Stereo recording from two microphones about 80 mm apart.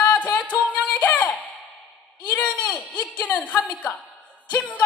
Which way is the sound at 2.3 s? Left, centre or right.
Centre.